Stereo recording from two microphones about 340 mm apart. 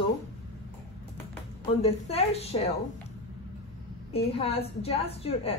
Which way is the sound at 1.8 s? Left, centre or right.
Centre.